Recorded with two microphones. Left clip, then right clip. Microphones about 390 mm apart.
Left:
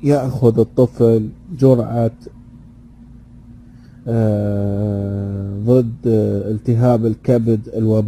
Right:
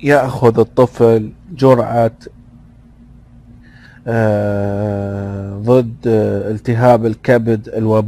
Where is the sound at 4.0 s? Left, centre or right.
Right.